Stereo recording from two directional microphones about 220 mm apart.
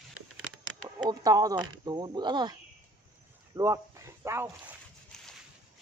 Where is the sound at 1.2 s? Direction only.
15° right (ahead or behind).